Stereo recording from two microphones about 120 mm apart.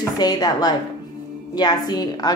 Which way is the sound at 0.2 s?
35° left (ahead or behind).